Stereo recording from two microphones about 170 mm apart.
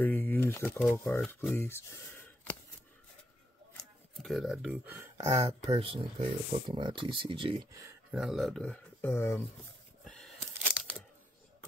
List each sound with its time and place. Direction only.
0.0 s speech: 10° left (ahead or behind)
1.5 s a sound: 15° left (ahead or behind)
4.2 s speech: centre (ahead or behind)
4.8 s speech: 15° right (ahead or behind)
5.8 s speech: 30° right (ahead or behind)
8.1 s speech: centre (ahead or behind); by 9.4 s 15° left (ahead or behind)
10.0 s a sound: centre (ahead or behind)